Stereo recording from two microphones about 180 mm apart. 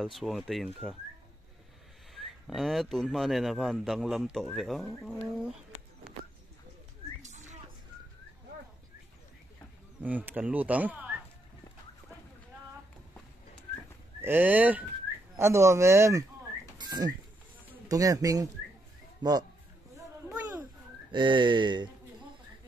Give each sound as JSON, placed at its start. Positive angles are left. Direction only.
{"t": 0.0, "sound": "speech", "side_deg": 0}
{"t": 2.1, "sound": "speech", "side_deg": 0}
{"t": 7.2, "sound": "a sound", "side_deg": -40}
{"t": 9.9, "sound": "speech", "side_deg": -10}
{"t": 14.2, "sound": "speech", "side_deg": -10}
{"t": 21.1, "sound": "speech", "side_deg": -25}